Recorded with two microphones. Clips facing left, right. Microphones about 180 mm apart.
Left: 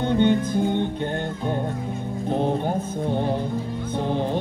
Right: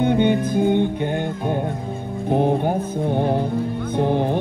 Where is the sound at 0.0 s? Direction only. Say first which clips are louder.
Right 2 dB; 15° right (ahead or behind).